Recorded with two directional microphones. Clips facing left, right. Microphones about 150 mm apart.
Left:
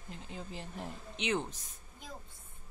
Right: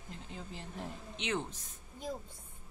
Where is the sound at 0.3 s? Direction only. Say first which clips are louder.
Left 2 dB; 15° left (ahead or behind).